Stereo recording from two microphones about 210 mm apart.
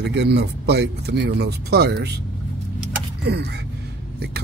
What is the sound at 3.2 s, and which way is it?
Speech, 50° right (ahead or behind).